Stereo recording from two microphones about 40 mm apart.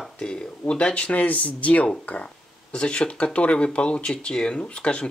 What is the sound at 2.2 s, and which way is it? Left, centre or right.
Speech, left.